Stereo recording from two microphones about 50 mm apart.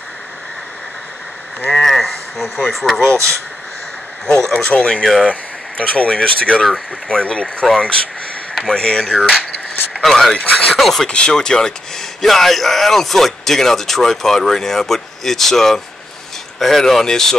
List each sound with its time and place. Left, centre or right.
1.7 s speech: centre
4.5 s speech: centre
5.3 s speech: left
10.0 s speech: centre
10.3 s speech: left
10.7 s speech: centre
11.1 s speech: centre